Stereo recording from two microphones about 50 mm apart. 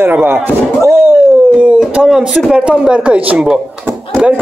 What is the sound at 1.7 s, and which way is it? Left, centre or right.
A man's voice, centre.